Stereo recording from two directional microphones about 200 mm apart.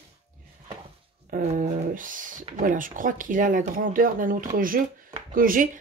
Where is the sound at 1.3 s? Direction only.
40° right (ahead or behind).